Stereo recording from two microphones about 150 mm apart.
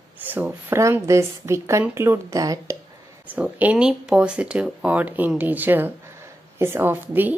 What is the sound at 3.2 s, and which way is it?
A woman's voice, 10° right (ahead or behind).